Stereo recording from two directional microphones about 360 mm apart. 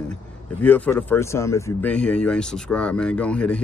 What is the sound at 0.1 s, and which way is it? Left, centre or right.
Speech, centre.